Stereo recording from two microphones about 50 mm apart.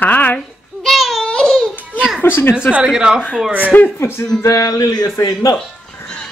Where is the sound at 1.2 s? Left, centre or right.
Centre.